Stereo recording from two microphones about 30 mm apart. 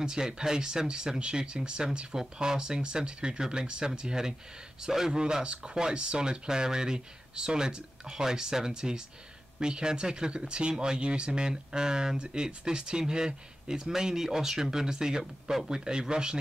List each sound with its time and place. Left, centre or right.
0.0 s speech: right